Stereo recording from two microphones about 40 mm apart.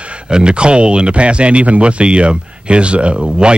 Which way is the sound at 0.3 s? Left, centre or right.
Right.